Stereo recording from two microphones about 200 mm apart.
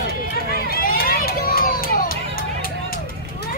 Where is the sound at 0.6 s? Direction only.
45° left (ahead or behind).